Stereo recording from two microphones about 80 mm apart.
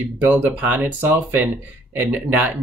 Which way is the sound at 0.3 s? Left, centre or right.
Right.